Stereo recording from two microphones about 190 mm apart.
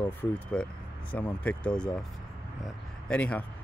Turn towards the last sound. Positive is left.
turn(degrees=5)  # may be behind; listen again after turning